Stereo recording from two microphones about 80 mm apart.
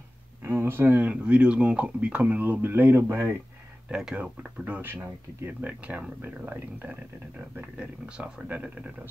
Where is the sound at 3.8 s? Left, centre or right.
Centre.